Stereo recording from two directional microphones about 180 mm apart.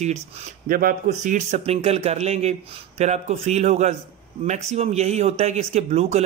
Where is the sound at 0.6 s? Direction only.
50° right (ahead or behind).